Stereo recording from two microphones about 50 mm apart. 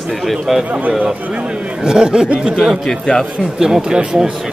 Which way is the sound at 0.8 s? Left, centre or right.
Right.